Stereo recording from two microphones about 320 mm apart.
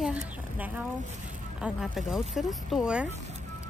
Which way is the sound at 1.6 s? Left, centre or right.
Centre.